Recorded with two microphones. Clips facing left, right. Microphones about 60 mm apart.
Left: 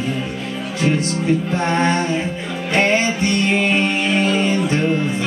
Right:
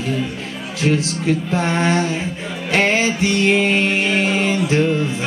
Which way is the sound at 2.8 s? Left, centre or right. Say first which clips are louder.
Even; right.